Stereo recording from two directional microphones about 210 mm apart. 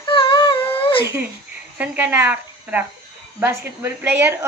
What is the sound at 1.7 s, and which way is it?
A woman's voice, 10° right (ahead or behind).